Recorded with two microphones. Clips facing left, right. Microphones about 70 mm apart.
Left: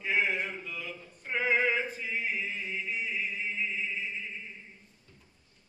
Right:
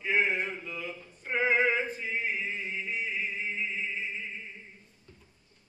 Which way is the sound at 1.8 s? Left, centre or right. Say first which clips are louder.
Right 1 dB; centre.